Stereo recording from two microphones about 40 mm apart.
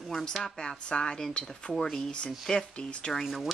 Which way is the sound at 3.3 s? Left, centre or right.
Centre.